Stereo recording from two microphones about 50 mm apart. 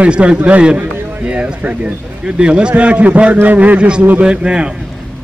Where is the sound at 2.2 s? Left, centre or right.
Centre.